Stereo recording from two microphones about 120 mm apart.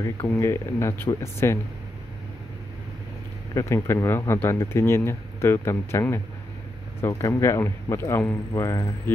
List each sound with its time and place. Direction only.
0.3 s speech: 20° left (ahead or behind)
3.5 s speech: 25° left (ahead or behind)